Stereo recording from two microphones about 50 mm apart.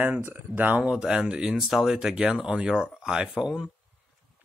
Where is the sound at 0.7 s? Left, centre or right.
Centre.